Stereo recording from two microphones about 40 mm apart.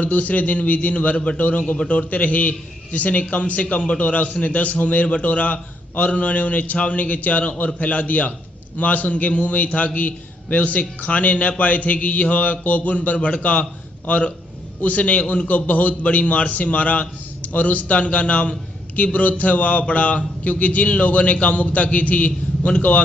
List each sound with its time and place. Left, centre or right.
0.0 s a man's voice: left
3.6 s a man's voice: left